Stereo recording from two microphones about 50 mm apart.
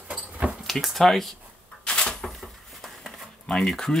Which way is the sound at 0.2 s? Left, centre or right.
Right.